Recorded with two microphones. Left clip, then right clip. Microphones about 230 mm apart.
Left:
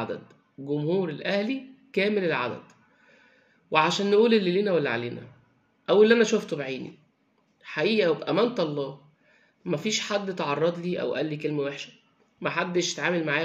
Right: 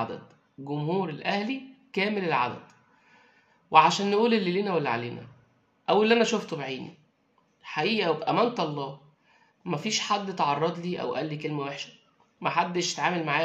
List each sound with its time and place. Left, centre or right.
0.0 s a man's voice: centre